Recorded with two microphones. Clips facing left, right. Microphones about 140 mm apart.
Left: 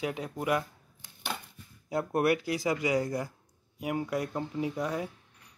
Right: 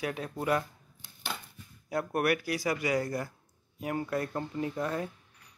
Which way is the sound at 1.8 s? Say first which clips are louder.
Left 2 dB; 25° left (ahead or behind).